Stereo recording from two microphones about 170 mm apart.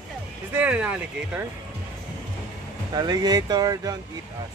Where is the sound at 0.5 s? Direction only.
10° right (ahead or behind).